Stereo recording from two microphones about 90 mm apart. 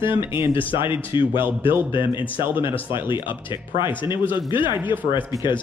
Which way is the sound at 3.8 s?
60° left (ahead or behind).